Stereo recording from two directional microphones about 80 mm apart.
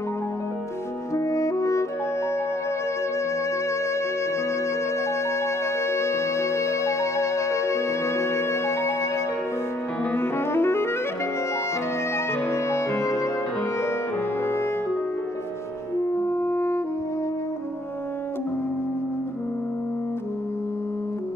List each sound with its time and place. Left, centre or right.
1.1 s music: left
3.2 s music: left
10.1 s saxophone: left
12.3 s music: left
14.4 s music: left
16.1 s french horn: left